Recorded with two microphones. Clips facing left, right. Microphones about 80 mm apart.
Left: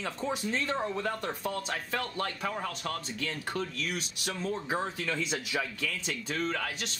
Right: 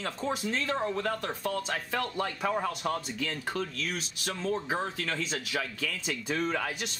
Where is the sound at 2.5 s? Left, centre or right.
Centre.